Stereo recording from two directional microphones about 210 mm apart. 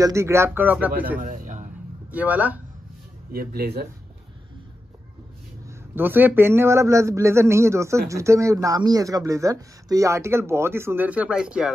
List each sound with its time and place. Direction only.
0.0 s speech: 15° right (ahead or behind)
1.2 s a sound: 35° right (ahead or behind)
2.1 s speech: 5° right (ahead or behind)
3.3 s speech: 45° right (ahead or behind)
5.9 s speech: 10° right (ahead or behind)